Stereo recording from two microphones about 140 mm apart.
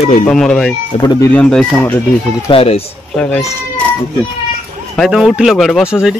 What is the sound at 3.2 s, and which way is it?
Speech, 10° left (ahead or behind).